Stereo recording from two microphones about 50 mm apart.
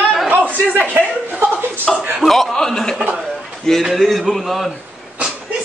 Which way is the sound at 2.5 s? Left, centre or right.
Centre.